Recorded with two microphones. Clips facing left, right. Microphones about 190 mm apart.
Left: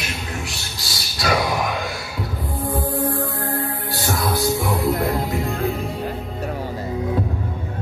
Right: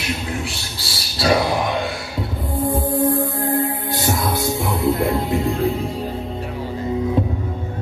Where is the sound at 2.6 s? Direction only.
25° right (ahead or behind).